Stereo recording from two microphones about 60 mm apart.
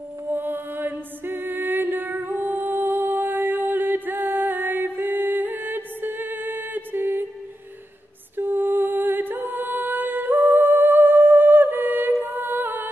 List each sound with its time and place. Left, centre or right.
0.3 s music: right
8.4 s music: right